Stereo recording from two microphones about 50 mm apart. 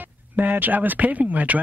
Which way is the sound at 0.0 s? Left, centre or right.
Right.